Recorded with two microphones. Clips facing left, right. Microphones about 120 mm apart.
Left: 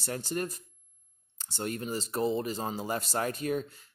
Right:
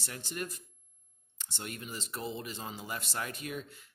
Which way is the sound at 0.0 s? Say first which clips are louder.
Left 7 dB; 40° left (ahead or behind).